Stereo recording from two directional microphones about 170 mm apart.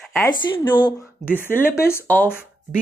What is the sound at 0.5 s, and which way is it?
Speech, 25° left (ahead or behind).